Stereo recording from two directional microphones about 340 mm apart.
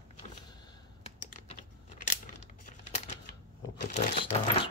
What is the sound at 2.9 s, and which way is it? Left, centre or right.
Typewriter, centre.